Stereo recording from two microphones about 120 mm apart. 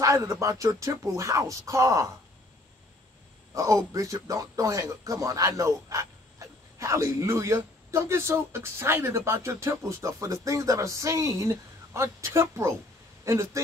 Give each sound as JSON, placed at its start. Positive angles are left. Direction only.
{"t": 0.0, "sound": "speech", "side_deg": -25}
{"t": 3.5, "sound": "speech", "side_deg": -25}